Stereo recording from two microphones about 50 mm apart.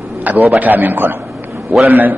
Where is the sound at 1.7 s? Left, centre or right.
Right.